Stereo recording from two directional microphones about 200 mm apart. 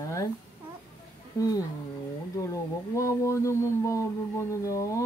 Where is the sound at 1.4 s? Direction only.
15° left (ahead or behind).